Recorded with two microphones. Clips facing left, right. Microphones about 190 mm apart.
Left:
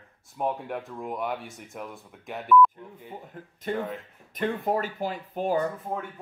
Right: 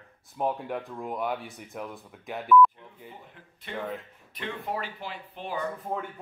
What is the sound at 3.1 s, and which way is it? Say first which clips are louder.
Speech: left 8 dB; 45° left (ahead or behind).